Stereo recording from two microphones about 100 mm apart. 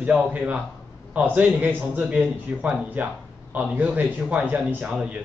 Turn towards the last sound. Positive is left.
turn(degrees=-10)  # may be behind; listen again after turning